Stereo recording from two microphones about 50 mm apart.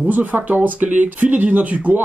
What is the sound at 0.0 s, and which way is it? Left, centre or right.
Speech, right.